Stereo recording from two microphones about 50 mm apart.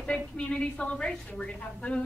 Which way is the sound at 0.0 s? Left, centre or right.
Left.